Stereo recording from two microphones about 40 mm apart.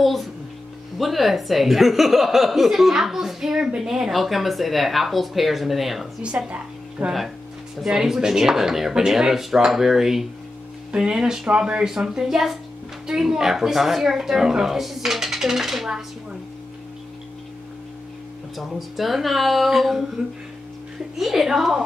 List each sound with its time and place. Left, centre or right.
0.0 s speech: centre
6.2 s a woman's voice: right
7.7 s speech: centre
18.8 s speech: centre
21.2 s speech: centre